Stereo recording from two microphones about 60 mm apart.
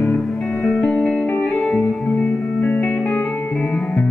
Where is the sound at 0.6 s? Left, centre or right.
Left.